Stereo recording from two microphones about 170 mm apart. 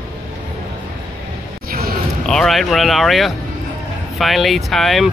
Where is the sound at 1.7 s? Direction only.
60° right (ahead or behind).